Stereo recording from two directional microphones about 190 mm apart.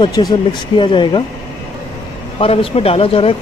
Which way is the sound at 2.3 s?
30° left (ahead or behind).